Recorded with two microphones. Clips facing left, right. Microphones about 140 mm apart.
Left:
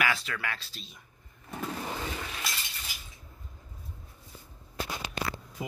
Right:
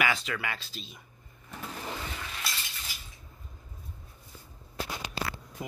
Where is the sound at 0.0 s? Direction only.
Centre (ahead or behind).